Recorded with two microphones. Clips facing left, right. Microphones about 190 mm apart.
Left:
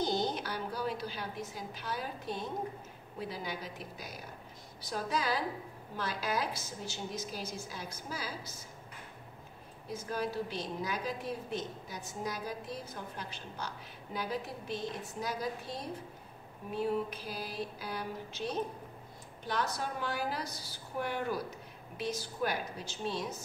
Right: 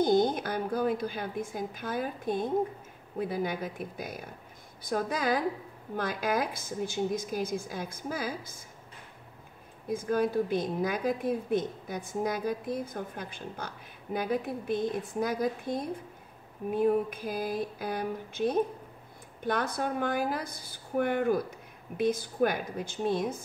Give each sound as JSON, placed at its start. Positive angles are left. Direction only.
{"t": 0.0, "sound": "a woman's voice", "side_deg": -50}
{"t": 9.8, "sound": "a woman's voice", "side_deg": -55}